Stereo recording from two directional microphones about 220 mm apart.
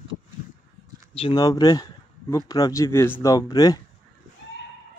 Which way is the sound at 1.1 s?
20° left (ahead or behind).